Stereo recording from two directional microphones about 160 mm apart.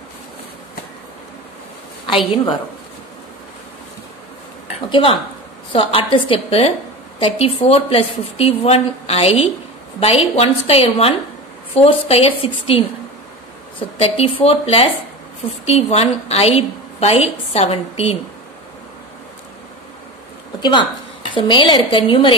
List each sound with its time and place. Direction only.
2.3 s a woman's voice: 30° left (ahead or behind)
4.8 s a woman's voice: 30° left (ahead or behind)
21.3 s a woman's voice: 30° left (ahead or behind)